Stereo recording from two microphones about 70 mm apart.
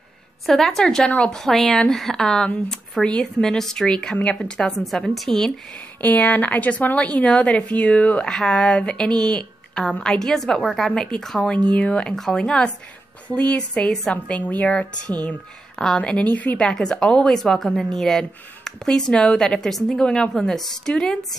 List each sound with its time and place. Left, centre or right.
0.5 s a woman's voice: centre
5.9 s a woman's voice: left